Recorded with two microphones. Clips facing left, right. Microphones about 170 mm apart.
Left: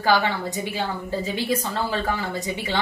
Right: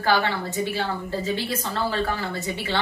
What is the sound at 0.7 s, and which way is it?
Speech, 15° left (ahead or behind).